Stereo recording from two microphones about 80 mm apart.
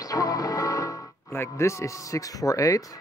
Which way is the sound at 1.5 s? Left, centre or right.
Left.